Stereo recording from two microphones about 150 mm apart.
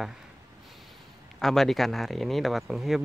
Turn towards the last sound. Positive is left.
turn(degrees=0)  # may be behind; listen again after turning